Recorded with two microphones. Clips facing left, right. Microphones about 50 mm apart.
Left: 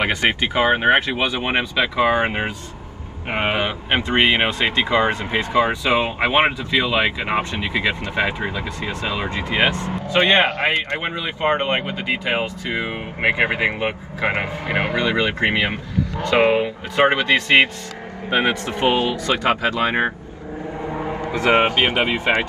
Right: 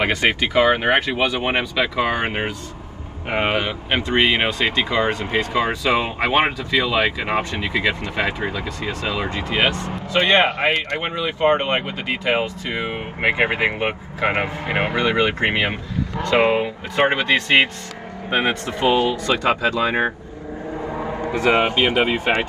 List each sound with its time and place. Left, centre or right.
0.0 s speech: left
11.8 s speech: centre
13.4 s speech: right
15.5 s speech: centre
16.2 s speech: left
18.3 s speech: left
21.4 s speech: left